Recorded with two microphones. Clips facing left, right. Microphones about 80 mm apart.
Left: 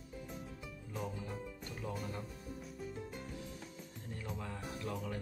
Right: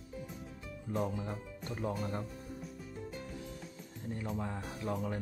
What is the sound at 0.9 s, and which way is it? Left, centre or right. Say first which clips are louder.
Speech: right 8 dB; right.